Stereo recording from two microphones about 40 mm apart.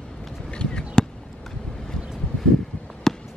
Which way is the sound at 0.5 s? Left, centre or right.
Left.